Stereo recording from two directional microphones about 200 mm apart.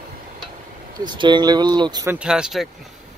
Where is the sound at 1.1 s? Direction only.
20° right (ahead or behind).